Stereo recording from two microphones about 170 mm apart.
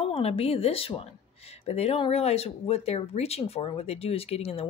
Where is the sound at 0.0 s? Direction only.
35° left (ahead or behind).